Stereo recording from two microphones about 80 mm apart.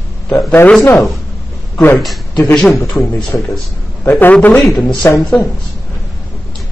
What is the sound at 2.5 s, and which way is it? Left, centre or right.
Speech, centre.